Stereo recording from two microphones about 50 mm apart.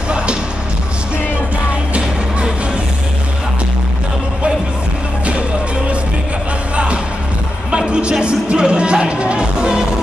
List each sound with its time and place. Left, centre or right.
7.7 s speech: centre